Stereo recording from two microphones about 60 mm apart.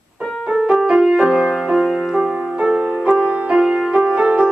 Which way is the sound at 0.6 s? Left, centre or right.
Centre.